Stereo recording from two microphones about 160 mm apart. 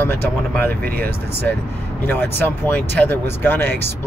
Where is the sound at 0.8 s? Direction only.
70° right (ahead or behind).